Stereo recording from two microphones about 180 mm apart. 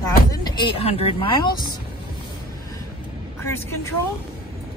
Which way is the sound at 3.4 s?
15° left (ahead or behind).